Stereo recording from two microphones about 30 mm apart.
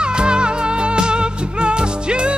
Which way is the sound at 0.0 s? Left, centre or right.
Right.